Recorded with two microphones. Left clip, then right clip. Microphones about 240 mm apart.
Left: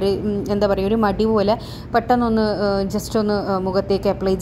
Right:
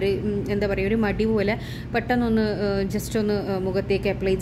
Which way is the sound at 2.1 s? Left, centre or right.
Centre.